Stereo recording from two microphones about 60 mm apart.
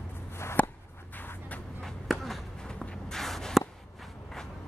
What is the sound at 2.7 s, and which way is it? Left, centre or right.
Walk, centre.